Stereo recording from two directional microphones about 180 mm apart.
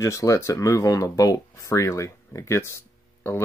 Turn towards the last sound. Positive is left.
turn(degrees=15)  # may be behind; listen again after turning